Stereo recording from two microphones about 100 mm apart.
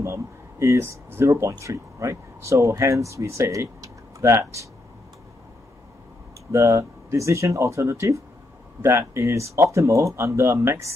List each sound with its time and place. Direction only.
0.0 s speech: 30° right (ahead or behind)
6.5 s speech: 25° right (ahead or behind)